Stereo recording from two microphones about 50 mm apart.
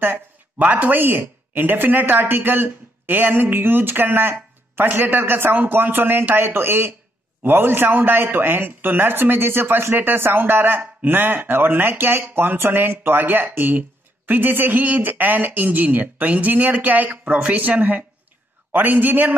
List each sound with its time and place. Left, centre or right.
0.0 s a sound: right
0.7 s speech: right
6.3 s speech: right